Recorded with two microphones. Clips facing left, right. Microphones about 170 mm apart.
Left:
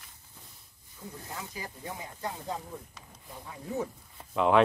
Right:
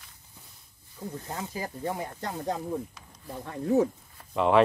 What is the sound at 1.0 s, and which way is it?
Speech, 55° right (ahead or behind).